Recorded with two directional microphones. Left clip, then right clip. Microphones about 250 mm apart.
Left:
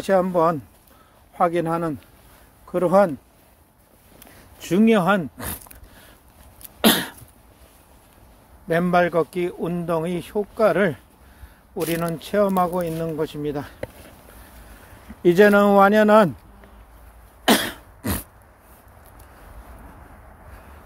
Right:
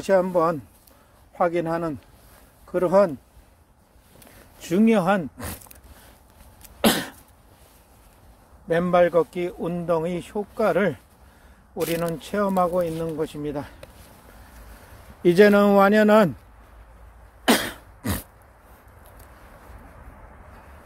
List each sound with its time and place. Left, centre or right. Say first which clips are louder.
0.0 s speech: left 1 dB; centre
4.6 s speech: left 2 dB; centre
6.8 s cough: left 3 dB; centre
8.6 s speech: even; centre
12.2 s speech: left 4 dB; centre
15.2 s speech: left 1 dB; centre
17.5 s cough: left 2 dB; centre